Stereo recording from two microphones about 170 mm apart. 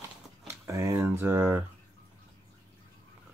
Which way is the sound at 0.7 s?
20° right (ahead or behind).